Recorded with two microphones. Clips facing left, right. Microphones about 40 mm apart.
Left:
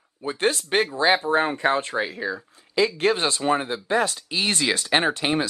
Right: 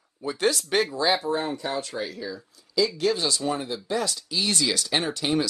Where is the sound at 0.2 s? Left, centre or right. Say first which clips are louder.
Left 1 dB; left.